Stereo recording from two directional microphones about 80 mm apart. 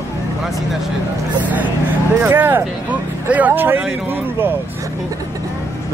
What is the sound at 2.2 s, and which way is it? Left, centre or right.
Speech, right.